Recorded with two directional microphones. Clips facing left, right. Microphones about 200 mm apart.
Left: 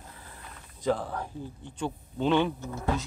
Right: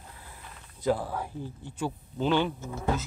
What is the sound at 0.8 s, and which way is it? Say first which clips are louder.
Speech: right 1 dB; 5° right (ahead or behind).